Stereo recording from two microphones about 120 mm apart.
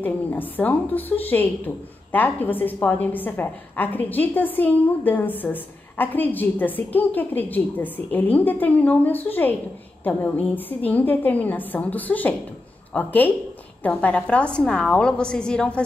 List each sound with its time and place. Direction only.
0.0 s a woman's voice: 15° left (ahead or behind)